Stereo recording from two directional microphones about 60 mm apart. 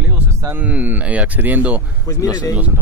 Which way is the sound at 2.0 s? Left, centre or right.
Left.